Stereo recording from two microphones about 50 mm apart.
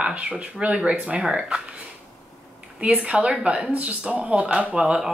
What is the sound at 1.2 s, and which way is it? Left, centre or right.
Speech, centre.